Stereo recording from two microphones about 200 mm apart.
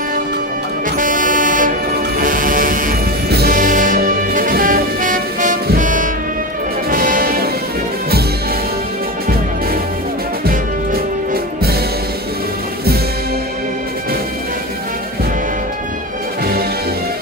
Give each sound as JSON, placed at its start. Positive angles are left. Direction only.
{"t": 0.9, "sound": "vehicle", "side_deg": -40}
{"t": 2.1, "sound": "music", "side_deg": -40}
{"t": 10.4, "sound": "music", "side_deg": -50}